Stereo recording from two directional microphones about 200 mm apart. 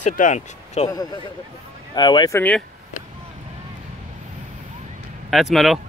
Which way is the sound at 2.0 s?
20° left (ahead or behind).